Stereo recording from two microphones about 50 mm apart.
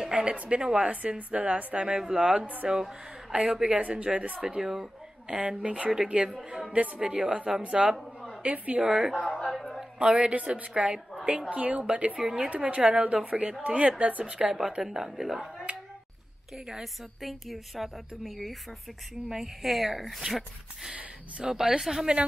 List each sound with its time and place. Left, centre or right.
0.0 s a woman's voice: centre
2.4 s speech: right
2.7 s a woman's voice: centre
4.4 s a woman's voice: centre
8.0 s a sound: centre
8.4 s a woman's voice: right
9.4 s a sound: centre
9.9 s a woman's voice: centre
14.8 s a woman's voice: centre
20.9 s a woman's voice: right
21.5 s speech: centre